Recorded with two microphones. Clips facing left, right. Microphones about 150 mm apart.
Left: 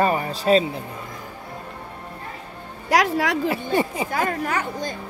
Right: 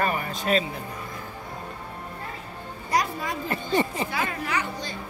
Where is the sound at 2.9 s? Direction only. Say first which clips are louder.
Left 7 dB; 85° left.